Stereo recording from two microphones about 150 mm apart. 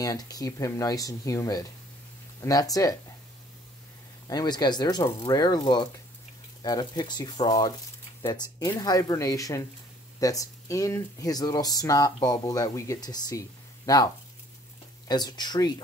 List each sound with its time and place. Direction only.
0.0 s speech: 25° left (ahead or behind)
4.3 s speech: 25° left (ahead or behind)